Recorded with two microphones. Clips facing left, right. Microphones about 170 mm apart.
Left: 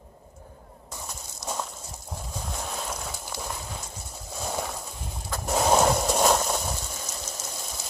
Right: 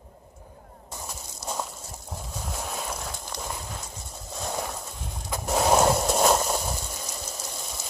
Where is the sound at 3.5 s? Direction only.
Centre (ahead or behind).